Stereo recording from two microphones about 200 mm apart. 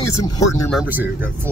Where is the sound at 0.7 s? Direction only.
10° right (ahead or behind).